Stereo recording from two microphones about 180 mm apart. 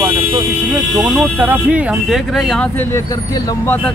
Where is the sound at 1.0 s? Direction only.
5° right (ahead or behind).